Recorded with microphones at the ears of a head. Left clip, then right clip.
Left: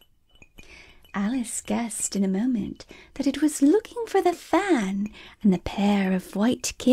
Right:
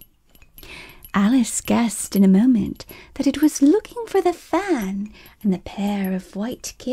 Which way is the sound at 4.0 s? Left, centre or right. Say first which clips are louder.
Right 3 dB; centre.